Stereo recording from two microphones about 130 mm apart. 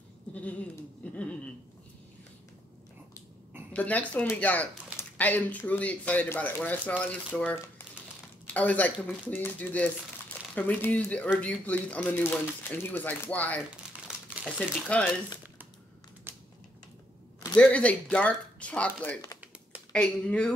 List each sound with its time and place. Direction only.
0.3 s speech: 10° left (ahead or behind)
1.0 s a sound: 10° left (ahead or behind)
3.7 s speech: 10° left (ahead or behind)
16.3 s finger snapping: 15° right (ahead or behind)
17.6 s speech: 10° left (ahead or behind)